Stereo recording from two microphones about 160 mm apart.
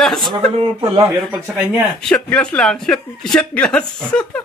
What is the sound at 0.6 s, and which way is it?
Speech, 35° right (ahead or behind).